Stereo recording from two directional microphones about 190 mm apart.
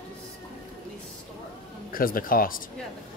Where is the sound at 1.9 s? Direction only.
50° left (ahead or behind).